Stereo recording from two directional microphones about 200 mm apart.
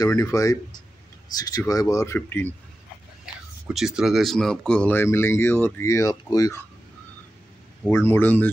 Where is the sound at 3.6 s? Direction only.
5° right (ahead or behind); by 6.6 s 15° left (ahead or behind).